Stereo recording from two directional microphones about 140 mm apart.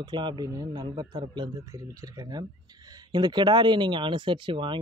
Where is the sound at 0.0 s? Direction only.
35° right (ahead or behind).